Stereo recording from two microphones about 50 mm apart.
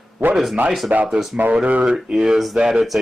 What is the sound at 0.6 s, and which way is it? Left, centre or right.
Speech, right.